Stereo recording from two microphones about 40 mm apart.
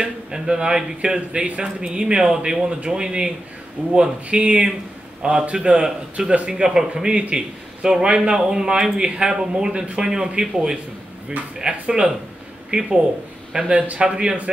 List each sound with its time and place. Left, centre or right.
0.0 s a man's voice: right
12.7 s speech: right
13.9 s a man's voice: right